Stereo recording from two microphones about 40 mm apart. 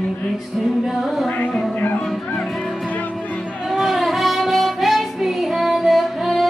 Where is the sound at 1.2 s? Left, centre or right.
Left.